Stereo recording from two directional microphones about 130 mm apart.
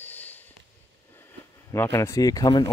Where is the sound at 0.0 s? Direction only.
15° left (ahead or behind).